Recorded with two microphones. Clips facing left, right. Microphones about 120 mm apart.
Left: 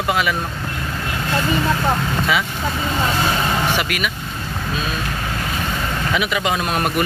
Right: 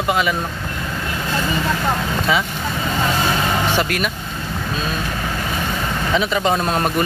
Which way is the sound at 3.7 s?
35° right (ahead or behind).